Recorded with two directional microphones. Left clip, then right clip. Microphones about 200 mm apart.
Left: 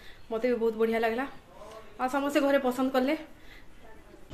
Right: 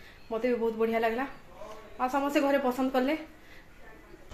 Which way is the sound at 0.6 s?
20° left (ahead or behind).